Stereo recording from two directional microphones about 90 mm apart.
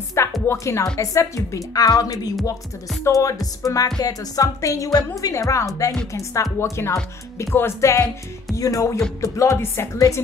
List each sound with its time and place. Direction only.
0.2 s music: 30° left (ahead or behind)
0.5 s a woman's voice: 35° left (ahead or behind)